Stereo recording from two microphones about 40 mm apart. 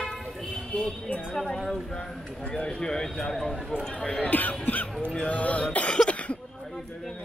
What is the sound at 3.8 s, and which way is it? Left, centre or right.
Speech, left.